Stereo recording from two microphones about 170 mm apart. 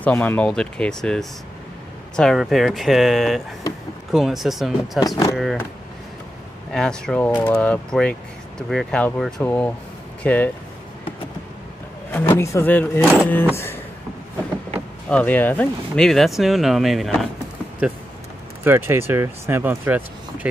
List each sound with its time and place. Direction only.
0.0 s speech: 10° left (ahead or behind)
5.0 s speech: 20° left (ahead or behind)
5.3 s speech: centre (ahead or behind)
6.7 s speech: 5° left (ahead or behind)
12.1 s speech: 15° left (ahead or behind)
15.0 s speech: 10° left (ahead or behind)
18.6 s speech: 10° right (ahead or behind)